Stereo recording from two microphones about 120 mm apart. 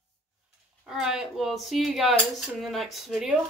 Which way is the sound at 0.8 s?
5° right (ahead or behind).